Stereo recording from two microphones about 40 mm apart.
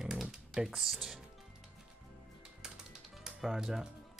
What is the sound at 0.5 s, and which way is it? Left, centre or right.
Speech, centre.